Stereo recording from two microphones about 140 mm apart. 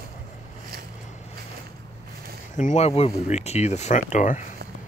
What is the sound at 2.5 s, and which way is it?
Speech, 60° left (ahead or behind).